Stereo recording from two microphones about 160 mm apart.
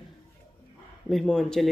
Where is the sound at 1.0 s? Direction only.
Centre (ahead or behind).